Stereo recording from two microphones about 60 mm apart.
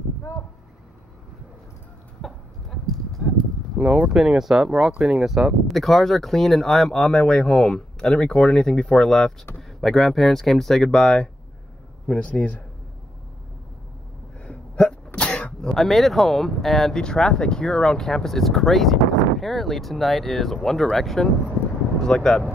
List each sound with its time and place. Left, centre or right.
2.2 s a sound: centre
3.7 s a sound: centre
4.1 s speech: centre
12.1 s speech: left
15.1 s throat clearing: left
15.6 s speech: centre